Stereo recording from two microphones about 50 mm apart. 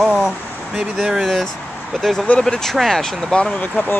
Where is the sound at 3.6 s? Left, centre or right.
Left.